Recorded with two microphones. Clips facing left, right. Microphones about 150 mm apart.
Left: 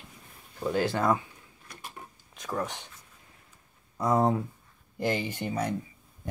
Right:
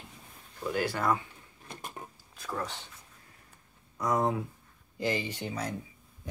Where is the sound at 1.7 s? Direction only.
25° right (ahead or behind).